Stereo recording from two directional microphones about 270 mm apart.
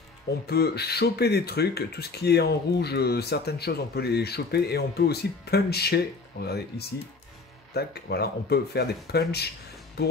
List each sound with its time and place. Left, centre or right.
0.5 s speech: left
7.7 s speech: left